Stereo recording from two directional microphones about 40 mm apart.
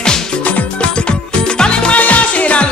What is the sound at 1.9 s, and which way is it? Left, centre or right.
Music, left.